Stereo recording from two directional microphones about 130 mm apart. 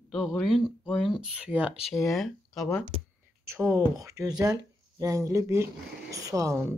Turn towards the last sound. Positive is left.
turn(degrees=-25)  # may be behind; listen again after turning